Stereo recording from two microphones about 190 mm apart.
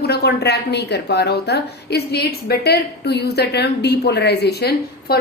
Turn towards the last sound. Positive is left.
turn(degrees=60)  # may be behind; listen again after turning